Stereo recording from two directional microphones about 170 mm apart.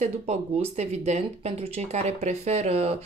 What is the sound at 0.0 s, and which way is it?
Speech, 40° right (ahead or behind).